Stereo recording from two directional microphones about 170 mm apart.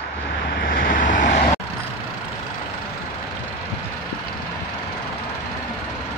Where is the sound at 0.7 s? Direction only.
55° left (ahead or behind).